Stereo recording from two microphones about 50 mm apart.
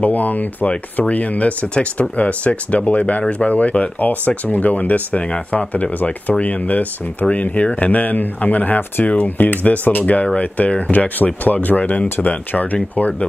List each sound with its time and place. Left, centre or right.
0.0 s speech: left